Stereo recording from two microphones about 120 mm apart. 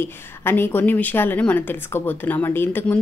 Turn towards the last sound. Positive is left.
turn(degrees=15)  # may be behind; listen again after turning